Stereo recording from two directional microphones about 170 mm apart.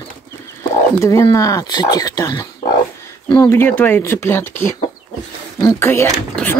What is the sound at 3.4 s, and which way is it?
Speech, 10° left (ahead or behind).